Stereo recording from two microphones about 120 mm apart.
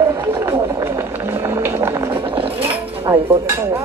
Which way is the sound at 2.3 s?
50° right (ahead or behind).